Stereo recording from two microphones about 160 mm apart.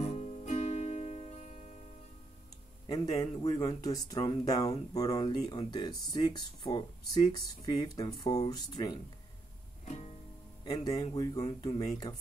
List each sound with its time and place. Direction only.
0.0 s music: 45° left (ahead or behind)
2.9 s speech: 25° left (ahead or behind)
9.8 s music: 45° left (ahead or behind)
10.6 s speech: 25° left (ahead or behind)
11.3 s speech: 45° left (ahead or behind)
12.1 s speech: 25° left (ahead or behind)